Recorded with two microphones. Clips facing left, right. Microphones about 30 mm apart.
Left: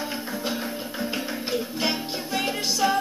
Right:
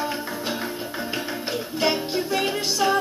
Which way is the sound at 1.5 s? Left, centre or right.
Right.